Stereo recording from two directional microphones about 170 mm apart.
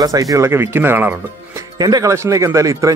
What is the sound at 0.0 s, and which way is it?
A man's voice, 20° right (ahead or behind).